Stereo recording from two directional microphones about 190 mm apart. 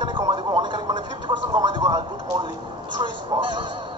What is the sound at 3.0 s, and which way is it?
Speech, 25° right (ahead or behind).